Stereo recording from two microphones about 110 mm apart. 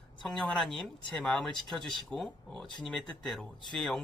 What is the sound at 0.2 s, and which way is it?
Speech, 5° left (ahead or behind).